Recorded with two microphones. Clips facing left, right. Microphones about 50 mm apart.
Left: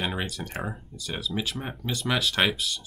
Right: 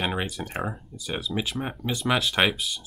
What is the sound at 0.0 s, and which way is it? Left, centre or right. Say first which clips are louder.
Speech: right 2 dB; centre.